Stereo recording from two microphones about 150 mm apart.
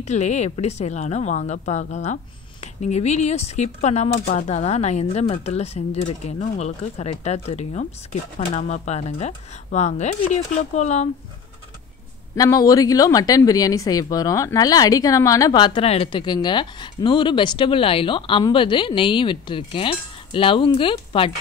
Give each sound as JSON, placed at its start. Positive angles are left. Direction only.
{"t": 0.0, "sound": "speech", "side_deg": 50}
{"t": 4.2, "sound": "speech", "side_deg": 70}
{"t": 4.5, "sound": "speech", "side_deg": 45}
{"t": 12.4, "sound": "a woman's voice", "side_deg": 25}